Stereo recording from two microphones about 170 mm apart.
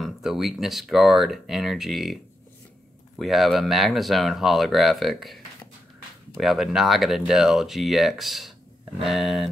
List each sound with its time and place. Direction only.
0.0 s speech: centre (ahead or behind)
3.2 s speech: centre (ahead or behind)